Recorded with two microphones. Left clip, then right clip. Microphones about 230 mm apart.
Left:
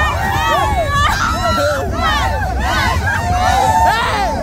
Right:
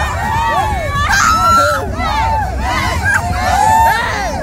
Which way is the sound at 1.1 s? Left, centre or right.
Right.